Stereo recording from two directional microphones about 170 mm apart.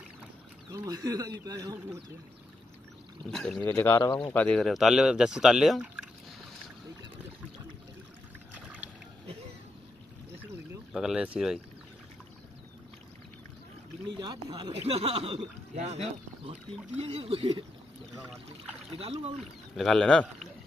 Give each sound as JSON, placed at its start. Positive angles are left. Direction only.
{"t": 0.7, "sound": "speech", "side_deg": -20}
{"t": 3.3, "sound": "speech", "side_deg": 5}
{"t": 3.6, "sound": "speech", "side_deg": 15}
{"t": 4.3, "sound": "speech", "side_deg": 10}
{"t": 10.9, "sound": "speech", "side_deg": -5}
{"t": 14.0, "sound": "speech", "side_deg": -25}
{"t": 18.9, "sound": "speech", "side_deg": -35}
{"t": 19.3, "sound": "speech", "side_deg": 0}